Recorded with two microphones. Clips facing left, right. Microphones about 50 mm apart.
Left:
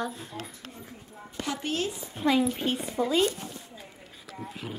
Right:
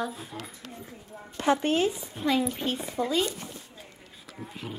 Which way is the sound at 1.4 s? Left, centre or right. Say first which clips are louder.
Right 9 dB; right.